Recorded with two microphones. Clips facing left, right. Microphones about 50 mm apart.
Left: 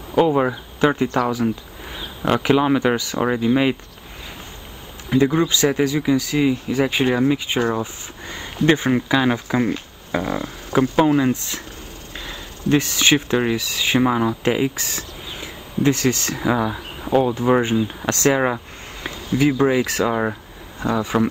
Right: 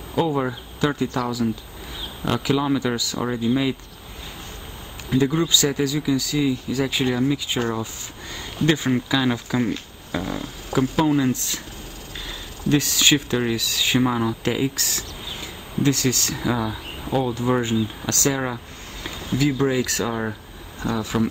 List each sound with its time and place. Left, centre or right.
0.3 s speech: left
5.1 s speech: left
7.7 s a sound: left
8.6 s speech: left
12.2 s a sound: centre
13.3 s speech: left
20.8 s speech: centre